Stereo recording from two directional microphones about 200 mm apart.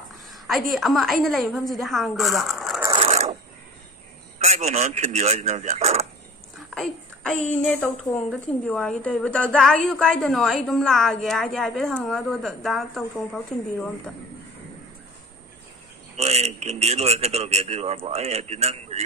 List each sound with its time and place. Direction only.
0.3 s a woman's voice: centre (ahead or behind)
2.8 s a sound: 25° right (ahead or behind)
4.6 s a man's voice: 35° right (ahead or behind)
6.7 s a woman's voice: 5° left (ahead or behind)
16.2 s a man's voice: 30° right (ahead or behind)